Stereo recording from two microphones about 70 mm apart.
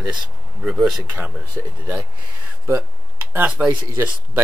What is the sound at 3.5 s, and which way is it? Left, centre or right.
Speech, centre.